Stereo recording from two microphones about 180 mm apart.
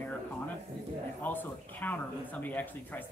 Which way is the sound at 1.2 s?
10° left (ahead or behind).